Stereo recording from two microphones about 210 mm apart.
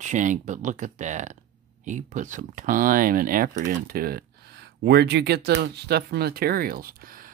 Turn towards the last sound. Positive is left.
turn(degrees=-40)  # may be behind; listen again after turning